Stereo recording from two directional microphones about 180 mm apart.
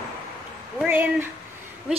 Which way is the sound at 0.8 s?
10° right (ahead or behind).